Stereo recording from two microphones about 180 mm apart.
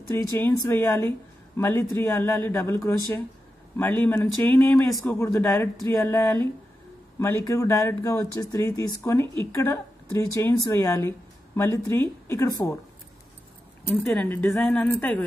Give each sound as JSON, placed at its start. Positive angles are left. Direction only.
{"t": 0.1, "sound": "speech", "side_deg": 15}
{"t": 13.8, "sound": "speech", "side_deg": 10}